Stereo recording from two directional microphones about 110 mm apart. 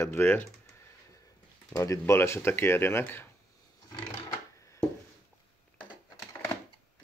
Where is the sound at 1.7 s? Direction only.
30° left (ahead or behind).